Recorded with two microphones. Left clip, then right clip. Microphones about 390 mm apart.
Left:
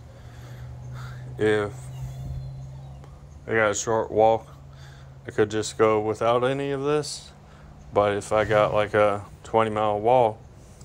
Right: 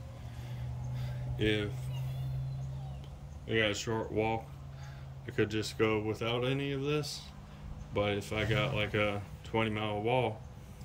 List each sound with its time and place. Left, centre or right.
1.4 s speech: left
3.4 s speech: centre
3.7 s speech: centre